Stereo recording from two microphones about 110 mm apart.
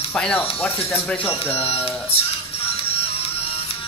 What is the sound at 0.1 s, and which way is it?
Speech, 10° left (ahead or behind).